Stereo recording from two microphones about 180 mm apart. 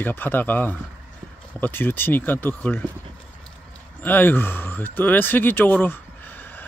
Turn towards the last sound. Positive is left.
turn(degrees=10)  # may be behind; listen again after turning